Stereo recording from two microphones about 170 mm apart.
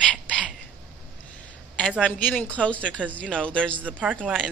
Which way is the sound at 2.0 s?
10° left (ahead or behind).